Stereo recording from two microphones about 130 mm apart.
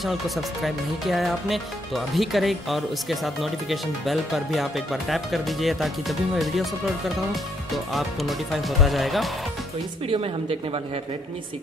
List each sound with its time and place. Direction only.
0.0 s speech: centre (ahead or behind)
7.7 s speech: centre (ahead or behind)
10.0 s speech: 45° right (ahead or behind)